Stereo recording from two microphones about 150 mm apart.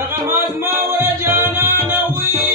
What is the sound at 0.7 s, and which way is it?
Music, 15° right (ahead or behind).